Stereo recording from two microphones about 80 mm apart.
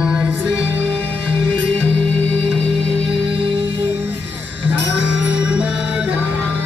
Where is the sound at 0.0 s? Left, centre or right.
Centre.